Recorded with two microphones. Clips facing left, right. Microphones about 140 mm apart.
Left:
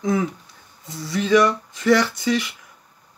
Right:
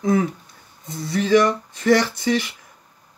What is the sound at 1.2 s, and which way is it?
Speech, 30° right (ahead or behind).